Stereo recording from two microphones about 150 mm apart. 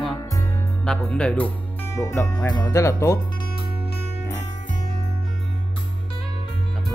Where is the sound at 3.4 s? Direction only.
85° left.